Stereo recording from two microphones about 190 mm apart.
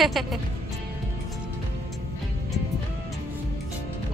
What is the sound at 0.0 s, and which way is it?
Speech, centre (ahead or behind).